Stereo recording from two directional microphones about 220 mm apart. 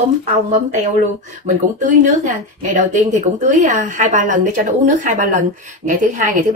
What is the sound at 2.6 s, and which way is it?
A woman's voice, 35° right (ahead or behind).